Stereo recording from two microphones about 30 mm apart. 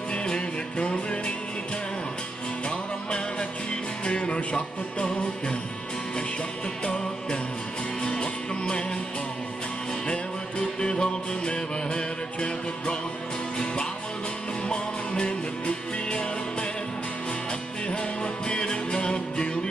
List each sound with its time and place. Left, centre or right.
0.1 s music: left
4.0 s music: left
6.8 s music: left
10.8 s music: left
14.7 s music: left
17.8 s music: left